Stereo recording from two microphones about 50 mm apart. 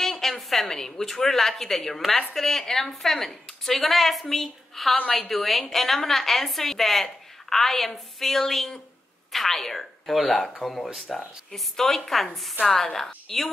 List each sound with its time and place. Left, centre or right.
0.0 s a sound: centre
0.7 s a woman's voice: centre
4.9 s a woman's voice: left
5.3 s a woman's voice: centre